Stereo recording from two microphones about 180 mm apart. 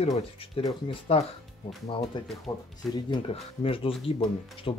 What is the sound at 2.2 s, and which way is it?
Speech, centre (ahead or behind).